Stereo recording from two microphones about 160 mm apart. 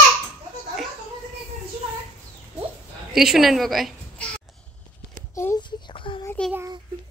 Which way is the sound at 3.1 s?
Centre (ahead or behind).